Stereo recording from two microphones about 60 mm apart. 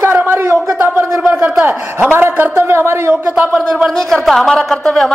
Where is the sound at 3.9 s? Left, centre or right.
Centre.